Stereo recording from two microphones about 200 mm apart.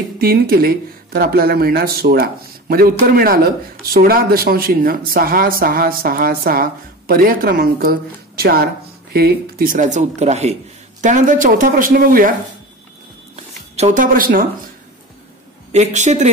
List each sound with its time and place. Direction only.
0.2 s speech: 50° right (ahead or behind)
13.4 s a sound: 35° right (ahead or behind)
15.7 s speech: 35° right (ahead or behind)